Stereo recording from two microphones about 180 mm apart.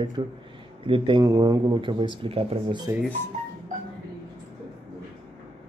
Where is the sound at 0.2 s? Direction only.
25° right (ahead or behind).